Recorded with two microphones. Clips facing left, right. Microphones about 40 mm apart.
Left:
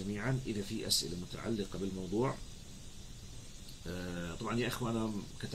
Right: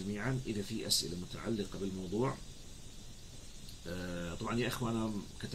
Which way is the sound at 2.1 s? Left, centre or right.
Right.